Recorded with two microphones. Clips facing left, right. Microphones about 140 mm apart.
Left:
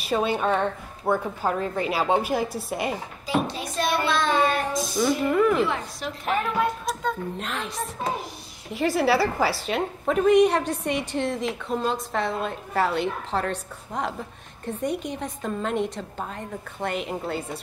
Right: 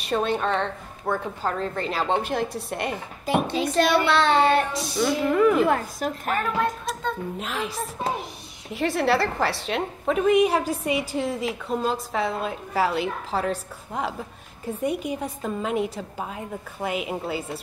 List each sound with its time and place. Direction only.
0.0 s a woman's voice: 5° left (ahead or behind)
3.5 s a child's voice: 80° right
4.9 s a woman's voice: centre (ahead or behind)
5.7 s a woman's voice: 45° right (ahead or behind)
6.3 s a woman's voice: centre (ahead or behind)